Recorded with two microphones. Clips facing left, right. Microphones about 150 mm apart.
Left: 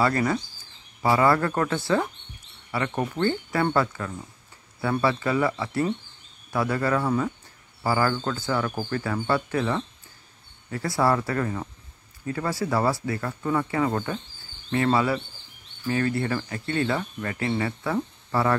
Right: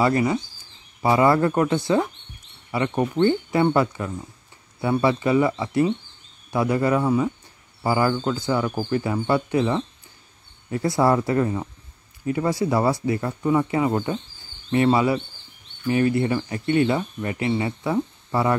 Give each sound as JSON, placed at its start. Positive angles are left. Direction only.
{"t": 0.0, "sound": "speech", "side_deg": -15}